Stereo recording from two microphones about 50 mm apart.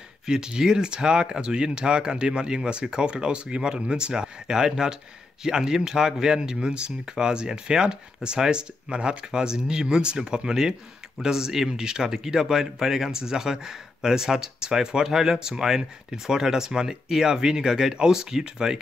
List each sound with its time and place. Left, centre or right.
0.3 s speech: centre